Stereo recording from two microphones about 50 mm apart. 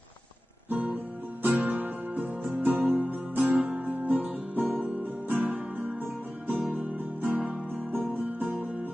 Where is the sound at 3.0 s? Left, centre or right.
Right.